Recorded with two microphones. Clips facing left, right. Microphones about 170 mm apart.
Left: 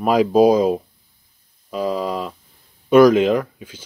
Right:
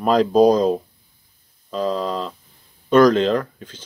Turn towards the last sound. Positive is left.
turn(degrees=10)  # may be behind; listen again after turning